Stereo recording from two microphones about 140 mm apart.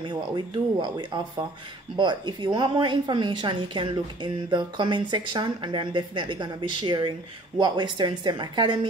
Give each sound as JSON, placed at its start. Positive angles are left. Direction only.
{"t": 0.0, "sound": "a woman's voice", "side_deg": -35}